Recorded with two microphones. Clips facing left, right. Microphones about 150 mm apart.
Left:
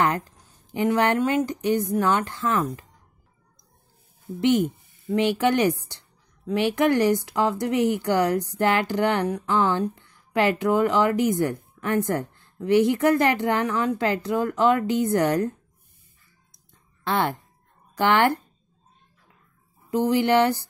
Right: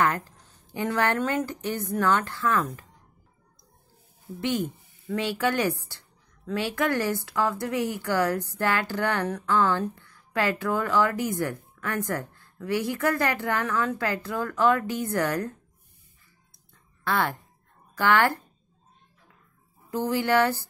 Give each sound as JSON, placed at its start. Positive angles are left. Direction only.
{"t": 0.0, "sound": "a woman's voice", "side_deg": 20}
{"t": 4.4, "sound": "speech", "side_deg": 20}
{"t": 16.5, "sound": "a sound", "side_deg": 20}
{"t": 17.9, "sound": "speech", "side_deg": 20}
{"t": 19.9, "sound": "speech", "side_deg": 20}